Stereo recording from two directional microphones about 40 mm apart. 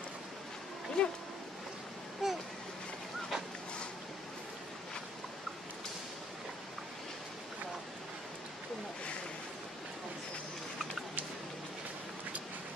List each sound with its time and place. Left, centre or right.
1.0 s speech: centre
2.2 s vehicle: centre